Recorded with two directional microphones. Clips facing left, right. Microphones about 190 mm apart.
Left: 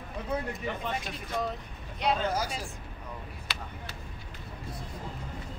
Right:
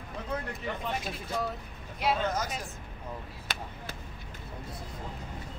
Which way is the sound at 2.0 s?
5° right (ahead or behind).